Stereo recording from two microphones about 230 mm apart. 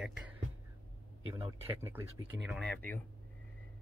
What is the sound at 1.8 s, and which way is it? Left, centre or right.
Speech, centre.